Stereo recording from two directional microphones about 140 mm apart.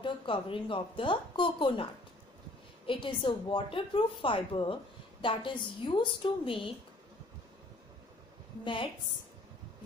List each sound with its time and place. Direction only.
0.0 s a woman's voice: 40° left (ahead or behind)
2.9 s a woman's voice: 35° left (ahead or behind)